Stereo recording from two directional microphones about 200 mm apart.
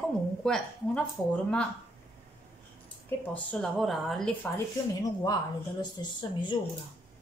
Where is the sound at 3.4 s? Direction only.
Centre (ahead or behind).